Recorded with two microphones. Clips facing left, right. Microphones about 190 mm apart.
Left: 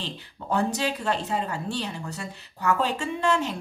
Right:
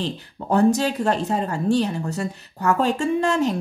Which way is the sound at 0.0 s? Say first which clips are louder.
Right 8 dB; 45° right (ahead or behind).